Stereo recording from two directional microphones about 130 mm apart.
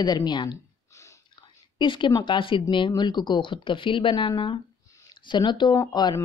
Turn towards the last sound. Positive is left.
turn(degrees=30)  # may be behind; listen again after turning